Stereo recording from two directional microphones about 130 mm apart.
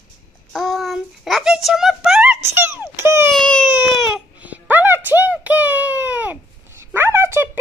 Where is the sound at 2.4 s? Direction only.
15° right (ahead or behind).